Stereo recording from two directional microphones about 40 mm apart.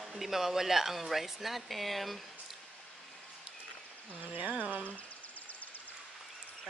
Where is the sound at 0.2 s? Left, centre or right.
Centre.